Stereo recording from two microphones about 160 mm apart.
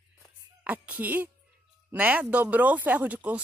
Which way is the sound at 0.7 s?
10° right (ahead or behind).